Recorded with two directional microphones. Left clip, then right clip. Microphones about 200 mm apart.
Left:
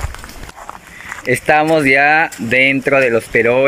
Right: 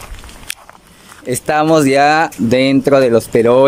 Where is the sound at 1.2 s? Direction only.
15° right (ahead or behind).